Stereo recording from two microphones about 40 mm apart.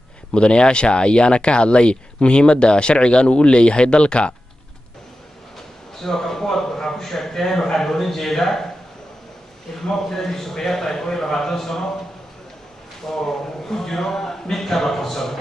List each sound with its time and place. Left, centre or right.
0.3 s speech: left
6.0 s a man's voice: centre
9.8 s a man's voice: centre
13.0 s a man's voice: centre